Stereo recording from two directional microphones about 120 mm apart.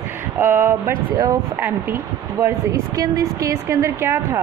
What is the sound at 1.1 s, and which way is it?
Speech, 30° right (ahead or behind).